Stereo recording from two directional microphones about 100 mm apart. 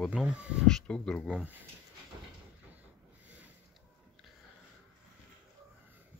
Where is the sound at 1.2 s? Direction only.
10° right (ahead or behind).